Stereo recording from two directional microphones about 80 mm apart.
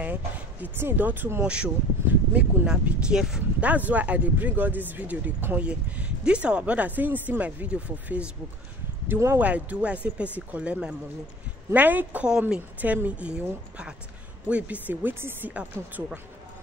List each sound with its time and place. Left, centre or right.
0.0 s speech: right
3.6 s speech: centre
9.0 s speech: right
9.4 s a woman's voice: centre